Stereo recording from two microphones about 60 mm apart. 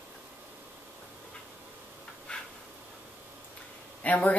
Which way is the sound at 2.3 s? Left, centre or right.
Centre.